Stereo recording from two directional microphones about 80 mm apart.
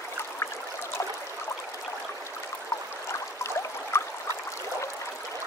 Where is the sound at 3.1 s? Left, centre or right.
Left.